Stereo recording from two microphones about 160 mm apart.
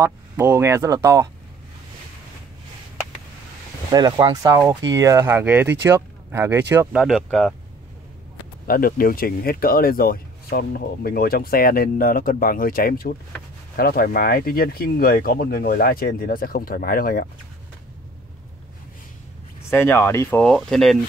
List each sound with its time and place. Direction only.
0.0 s speech: 15° right (ahead or behind)
3.9 s speech: 25° right (ahead or behind); by 7.5 s 5° left (ahead or behind)
8.6 s speech: 65° left (ahead or behind)
19.7 s speech: 15° left (ahead or behind)
20.4 s speech: centre (ahead or behind)